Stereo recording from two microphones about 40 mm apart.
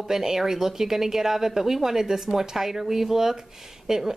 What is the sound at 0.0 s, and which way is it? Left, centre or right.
Speech, centre.